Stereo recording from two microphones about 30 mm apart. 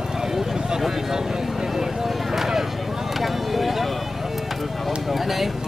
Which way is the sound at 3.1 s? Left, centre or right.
Centre.